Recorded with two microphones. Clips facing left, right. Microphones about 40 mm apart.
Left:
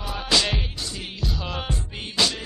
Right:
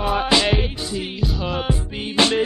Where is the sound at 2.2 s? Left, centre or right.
Right.